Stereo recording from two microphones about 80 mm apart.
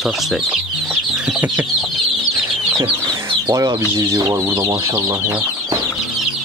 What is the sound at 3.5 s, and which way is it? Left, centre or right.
Speech, right.